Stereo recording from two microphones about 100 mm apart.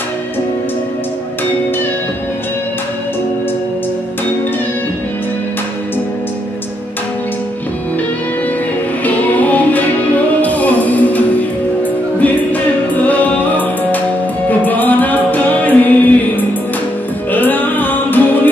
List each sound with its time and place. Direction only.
9.0 s music: 15° left (ahead or behind)
12.9 s music: 15° left (ahead or behind)